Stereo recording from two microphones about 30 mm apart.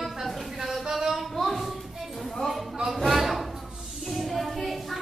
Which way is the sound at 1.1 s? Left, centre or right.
Centre.